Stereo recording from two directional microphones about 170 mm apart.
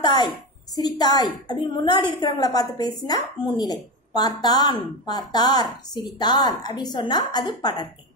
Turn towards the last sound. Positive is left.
turn(degrees=25)  # may be behind; listen again after turning